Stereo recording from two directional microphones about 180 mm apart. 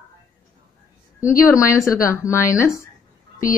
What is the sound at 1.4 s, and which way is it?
A woman's voice, 15° left (ahead or behind).